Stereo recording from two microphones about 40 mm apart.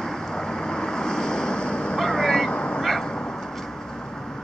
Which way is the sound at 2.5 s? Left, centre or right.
Left.